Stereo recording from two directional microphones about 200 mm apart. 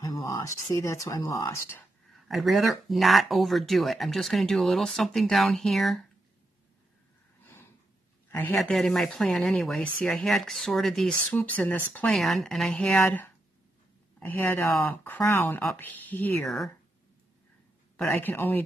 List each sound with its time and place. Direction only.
0.0 s speech: 15° left (ahead or behind)
2.2 s speech: centre (ahead or behind)
7.4 s snort: 10° left (ahead or behind)
8.3 s speech: 10° left (ahead or behind)
17.9 s speech: 5° left (ahead or behind)